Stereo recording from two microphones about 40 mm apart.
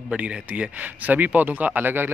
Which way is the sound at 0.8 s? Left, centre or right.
Right.